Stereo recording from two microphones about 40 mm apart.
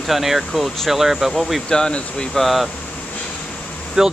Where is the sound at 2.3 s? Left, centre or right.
Centre.